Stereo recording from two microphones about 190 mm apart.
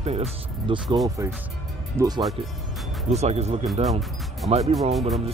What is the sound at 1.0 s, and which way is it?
Speech, 15° right (ahead or behind).